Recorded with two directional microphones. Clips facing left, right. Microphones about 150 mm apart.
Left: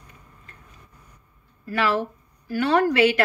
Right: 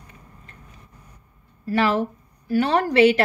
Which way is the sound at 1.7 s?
30° right (ahead or behind).